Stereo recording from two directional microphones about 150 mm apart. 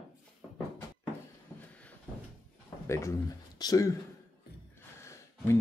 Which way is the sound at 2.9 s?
20° left (ahead or behind).